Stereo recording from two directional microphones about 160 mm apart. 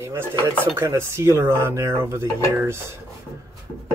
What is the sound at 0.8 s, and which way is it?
Speech, 15° right (ahead or behind).